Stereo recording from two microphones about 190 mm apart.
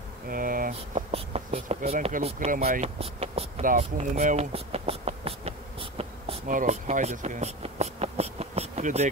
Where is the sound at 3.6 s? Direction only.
45° right (ahead or behind).